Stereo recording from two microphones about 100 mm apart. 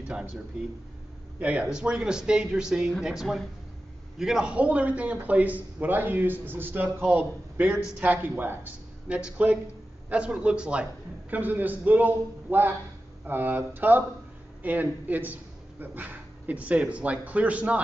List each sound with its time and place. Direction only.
0.1 s a man's voice: 10° right (ahead or behind)
1.4 s a man's voice: 10° right (ahead or behind)